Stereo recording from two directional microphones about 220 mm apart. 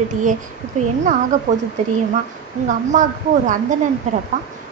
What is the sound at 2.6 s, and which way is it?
A woman's voice, 35° right (ahead or behind).